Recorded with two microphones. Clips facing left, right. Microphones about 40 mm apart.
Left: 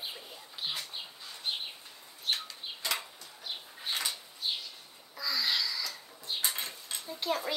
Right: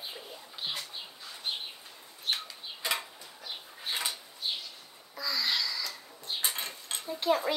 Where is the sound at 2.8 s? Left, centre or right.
Centre.